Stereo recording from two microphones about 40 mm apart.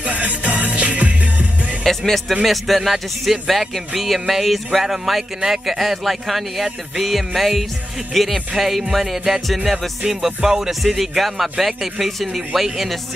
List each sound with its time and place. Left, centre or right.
0.0 s music: right
1.9 s speech: centre
9.7 s music: centre
10.7 s speech: centre